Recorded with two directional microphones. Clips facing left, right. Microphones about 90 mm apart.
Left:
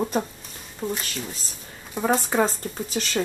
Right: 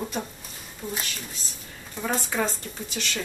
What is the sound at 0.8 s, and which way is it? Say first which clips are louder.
Speech: left 6 dB; 55° left (ahead or behind).